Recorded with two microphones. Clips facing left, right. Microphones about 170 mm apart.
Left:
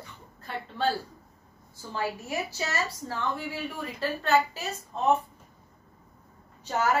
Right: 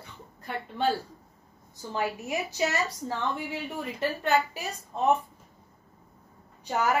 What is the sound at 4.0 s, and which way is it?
Speech, 15° right (ahead or behind).